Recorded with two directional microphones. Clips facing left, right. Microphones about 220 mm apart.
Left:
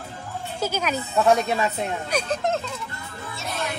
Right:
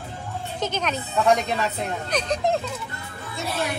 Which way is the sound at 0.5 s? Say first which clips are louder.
Left 1 dB; 10° left (ahead or behind).